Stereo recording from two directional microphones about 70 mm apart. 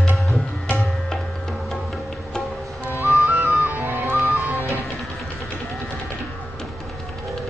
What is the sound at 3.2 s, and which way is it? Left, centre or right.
Music, right.